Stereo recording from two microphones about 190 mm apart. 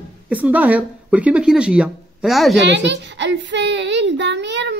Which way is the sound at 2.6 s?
65° right (ahead or behind).